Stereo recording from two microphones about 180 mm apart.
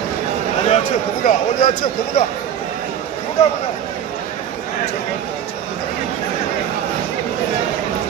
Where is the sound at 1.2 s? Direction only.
45° left (ahead or behind).